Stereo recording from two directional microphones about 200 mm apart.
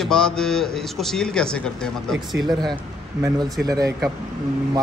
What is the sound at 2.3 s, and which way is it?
Speech, 20° right (ahead or behind).